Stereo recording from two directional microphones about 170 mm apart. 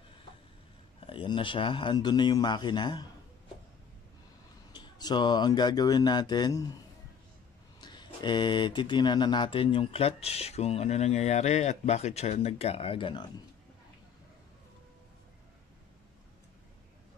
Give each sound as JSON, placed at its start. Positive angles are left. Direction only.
{"t": 1.0, "sound": "speech", "side_deg": 30}
{"t": 4.7, "sound": "speech", "side_deg": 25}
{"t": 7.8, "sound": "speech", "side_deg": 25}